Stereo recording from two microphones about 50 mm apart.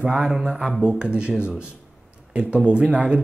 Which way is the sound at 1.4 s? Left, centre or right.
Centre.